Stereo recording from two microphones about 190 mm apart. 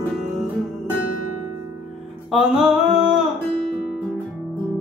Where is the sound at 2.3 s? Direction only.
Centre (ahead or behind).